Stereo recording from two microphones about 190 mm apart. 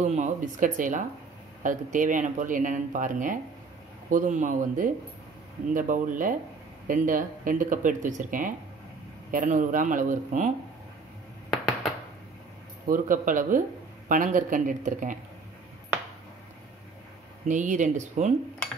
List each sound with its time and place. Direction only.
0.0 s speech: 40° right (ahead or behind)
12.8 s speech: 45° right (ahead or behind)
17.5 s speech: 40° right (ahead or behind)